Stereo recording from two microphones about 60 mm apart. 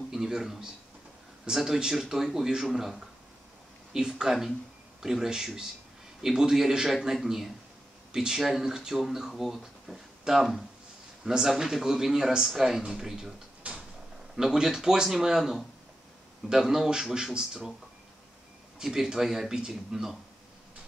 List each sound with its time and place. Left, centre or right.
0.1 s speech: centre
13.6 s a sound: right
14.3 s speech: centre
18.8 s speech: centre